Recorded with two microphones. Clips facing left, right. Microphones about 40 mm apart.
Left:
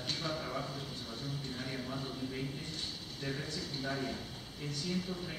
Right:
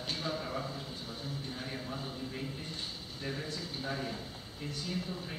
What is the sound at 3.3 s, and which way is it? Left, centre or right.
A man's voice, centre.